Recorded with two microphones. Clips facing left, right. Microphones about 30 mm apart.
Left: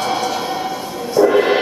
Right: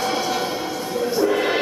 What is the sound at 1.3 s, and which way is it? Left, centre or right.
Music, centre.